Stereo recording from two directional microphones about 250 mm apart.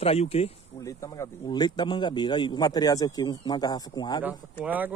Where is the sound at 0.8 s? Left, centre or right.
Centre.